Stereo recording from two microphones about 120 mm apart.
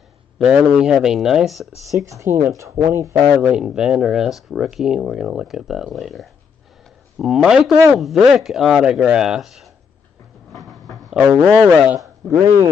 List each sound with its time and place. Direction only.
0.4 s speech: 10° right (ahead or behind)
2.0 s speech: 25° right (ahead or behind)
3.3 s speech: 10° right (ahead or behind)
10.5 s a sound: centre (ahead or behind)
11.3 s speech: 10° right (ahead or behind)
12.0 s a man's voice: 25° right (ahead or behind)